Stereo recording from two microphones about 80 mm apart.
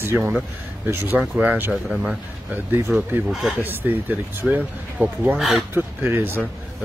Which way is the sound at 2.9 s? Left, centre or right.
Centre.